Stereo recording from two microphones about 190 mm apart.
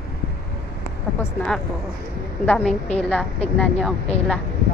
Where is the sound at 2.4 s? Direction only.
5° left (ahead or behind).